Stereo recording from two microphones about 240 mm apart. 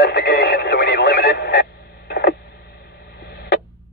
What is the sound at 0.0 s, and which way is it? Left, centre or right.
Radio, left.